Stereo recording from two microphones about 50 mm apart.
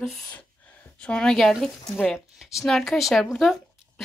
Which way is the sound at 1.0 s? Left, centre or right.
Centre.